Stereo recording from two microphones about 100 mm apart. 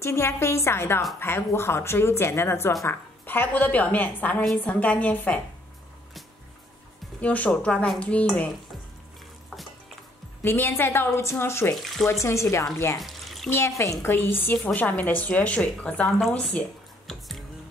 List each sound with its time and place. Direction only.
0.0 s a woman's voice: 25° left (ahead or behind)
7.2 s a woman's voice: 15° left (ahead or behind)
10.4 s speech: 25° left (ahead or behind)
11.8 s speech: centre (ahead or behind)
12.1 s speech: 30° left (ahead or behind)
13.0 s a sound: centre (ahead or behind)
13.5 s a woman's voice: 30° left (ahead or behind); by 16.5 s centre (ahead or behind)